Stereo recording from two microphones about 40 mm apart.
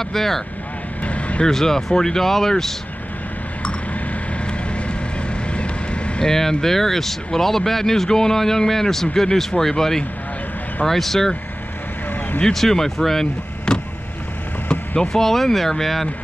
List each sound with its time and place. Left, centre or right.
0.1 s speech: centre
1.0 s vehicle: left
1.4 s speech: centre
5.5 s vehicle: left
6.2 s speech: centre
12.5 s speech: centre
13.7 s vehicle: left
15.1 s speech: centre